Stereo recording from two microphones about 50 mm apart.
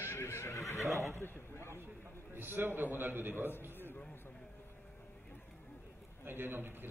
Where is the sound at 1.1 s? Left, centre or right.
Left.